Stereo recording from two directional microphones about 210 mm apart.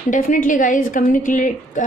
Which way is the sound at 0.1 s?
40° left (ahead or behind).